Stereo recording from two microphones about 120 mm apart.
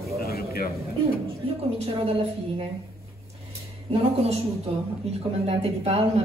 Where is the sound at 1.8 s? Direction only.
55° right (ahead or behind).